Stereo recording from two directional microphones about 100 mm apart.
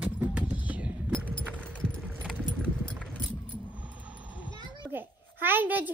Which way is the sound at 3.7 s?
15° right (ahead or behind).